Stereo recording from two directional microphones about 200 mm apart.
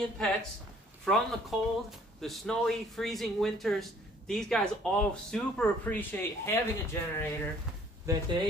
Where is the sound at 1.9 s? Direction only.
Centre (ahead or behind).